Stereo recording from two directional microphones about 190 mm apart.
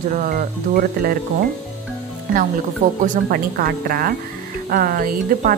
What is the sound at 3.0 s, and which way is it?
A woman's voice, 45° right (ahead or behind).